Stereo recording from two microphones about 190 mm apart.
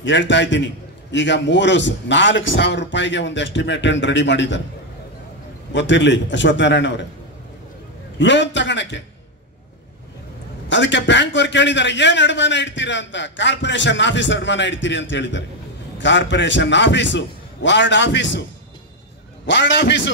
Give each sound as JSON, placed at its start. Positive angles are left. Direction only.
{"t": 0.0, "sound": "a man's voice", "side_deg": 70}
{"t": 5.7, "sound": "a man's voice", "side_deg": 70}
{"t": 8.2, "sound": "a man's voice", "side_deg": 70}
{"t": 10.7, "sound": "a man's voice", "side_deg": 70}
{"t": 19.4, "sound": "a man's voice", "side_deg": 70}